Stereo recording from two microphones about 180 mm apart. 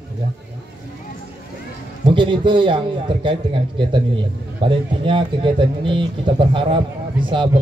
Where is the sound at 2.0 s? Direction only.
25° right (ahead or behind).